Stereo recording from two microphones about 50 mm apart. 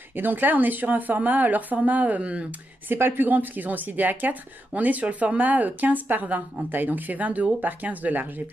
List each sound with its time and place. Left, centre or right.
0.1 s a woman's voice: right
2.9 s a woman's voice: right